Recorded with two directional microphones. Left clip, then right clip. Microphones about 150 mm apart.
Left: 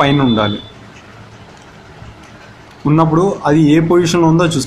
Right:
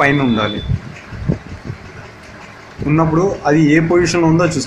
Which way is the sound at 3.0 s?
35° left (ahead or behind).